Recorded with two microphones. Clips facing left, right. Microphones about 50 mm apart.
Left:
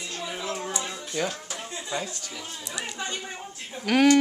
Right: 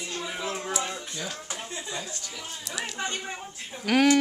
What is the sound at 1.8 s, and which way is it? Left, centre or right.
Speech, left.